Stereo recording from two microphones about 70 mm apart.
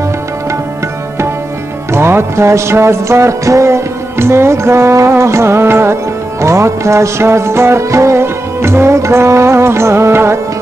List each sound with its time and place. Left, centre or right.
1.9 s music: right